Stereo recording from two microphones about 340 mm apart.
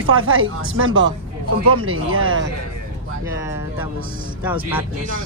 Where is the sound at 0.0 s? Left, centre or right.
Right.